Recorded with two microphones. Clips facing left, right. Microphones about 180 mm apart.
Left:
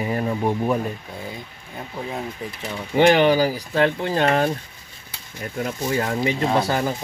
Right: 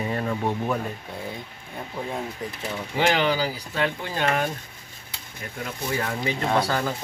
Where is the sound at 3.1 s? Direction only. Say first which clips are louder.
Left 7 dB; 40° left (ahead or behind).